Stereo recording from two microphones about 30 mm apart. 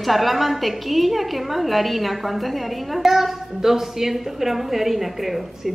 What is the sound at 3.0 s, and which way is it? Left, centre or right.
A woman's voice, centre.